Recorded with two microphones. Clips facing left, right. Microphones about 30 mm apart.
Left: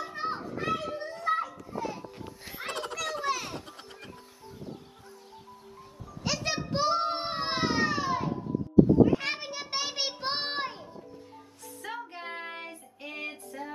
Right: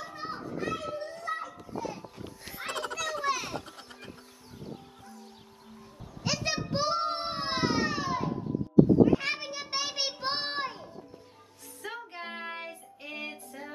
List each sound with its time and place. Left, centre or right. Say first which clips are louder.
0.0 s children playing: left 5 dB; left
0.7 s children playing: left 4 dB; centre
1.0 s children playing: left 6 dB; left
1.9 s a sound: left 1 dB; centre
6.2 s child singing: even; centre
9.0 s a sound: even; centre
11.8 s child singing: left 1 dB; centre